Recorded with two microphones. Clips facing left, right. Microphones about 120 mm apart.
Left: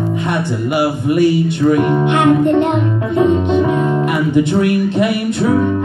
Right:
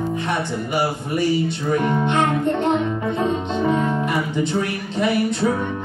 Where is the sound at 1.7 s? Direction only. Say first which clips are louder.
Left 4 dB; 70° left (ahead or behind).